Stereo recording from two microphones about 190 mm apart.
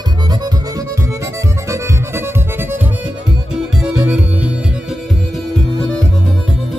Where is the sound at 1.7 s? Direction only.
10° right (ahead or behind).